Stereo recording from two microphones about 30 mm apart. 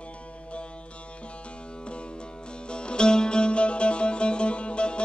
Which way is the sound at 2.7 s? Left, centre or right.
Left.